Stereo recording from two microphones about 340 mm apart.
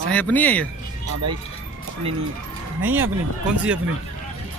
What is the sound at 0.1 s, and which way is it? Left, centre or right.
Speech, centre.